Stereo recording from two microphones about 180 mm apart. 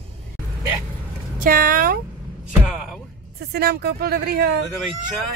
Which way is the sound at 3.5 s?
60° right (ahead or behind).